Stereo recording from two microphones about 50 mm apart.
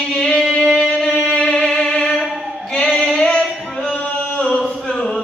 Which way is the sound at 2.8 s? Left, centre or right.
Centre.